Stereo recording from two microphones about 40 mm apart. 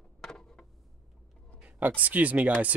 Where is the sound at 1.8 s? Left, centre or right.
Right.